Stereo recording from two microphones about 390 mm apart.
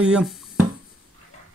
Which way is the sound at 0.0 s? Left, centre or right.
Centre.